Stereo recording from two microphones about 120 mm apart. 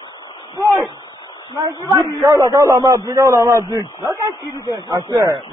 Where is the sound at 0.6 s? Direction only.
Centre (ahead or behind).